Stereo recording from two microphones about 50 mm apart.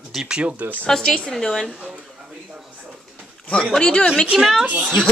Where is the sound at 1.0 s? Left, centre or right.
Left.